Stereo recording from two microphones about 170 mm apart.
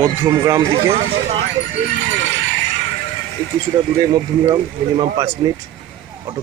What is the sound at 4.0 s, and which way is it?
Speech, 25° right (ahead or behind).